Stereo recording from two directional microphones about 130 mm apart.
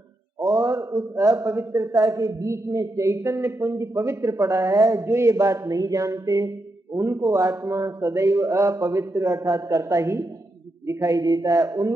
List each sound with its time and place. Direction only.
0.4 s a man's voice: 25° right (ahead or behind)